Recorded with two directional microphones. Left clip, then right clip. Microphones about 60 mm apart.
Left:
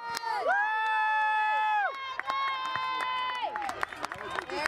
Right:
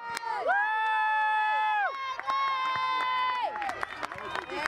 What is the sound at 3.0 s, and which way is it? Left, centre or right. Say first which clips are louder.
Crowd: right 3 dB; right.